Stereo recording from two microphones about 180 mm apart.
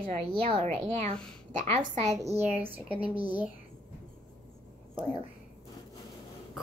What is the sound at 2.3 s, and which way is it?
Speech, 10° right (ahead or behind).